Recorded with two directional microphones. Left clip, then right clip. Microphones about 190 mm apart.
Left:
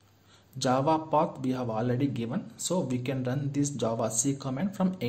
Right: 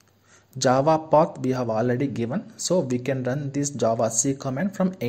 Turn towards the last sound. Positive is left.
turn(degrees=-30)  # may be behind; listen again after turning